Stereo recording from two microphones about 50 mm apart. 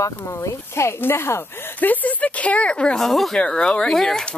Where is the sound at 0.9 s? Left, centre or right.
Left.